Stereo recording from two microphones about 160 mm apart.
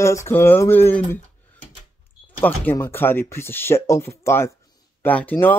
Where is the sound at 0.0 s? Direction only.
15° left (ahead or behind).